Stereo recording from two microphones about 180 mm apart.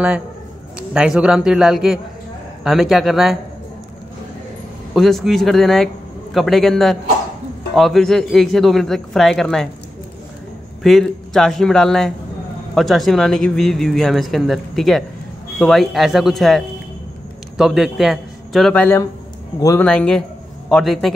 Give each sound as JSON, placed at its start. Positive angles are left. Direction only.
{"t": 0.7, "sound": "speech", "side_deg": -5}
{"t": 4.9, "sound": "speech", "side_deg": 0}
{"t": 10.8, "sound": "a man's voice", "side_deg": 0}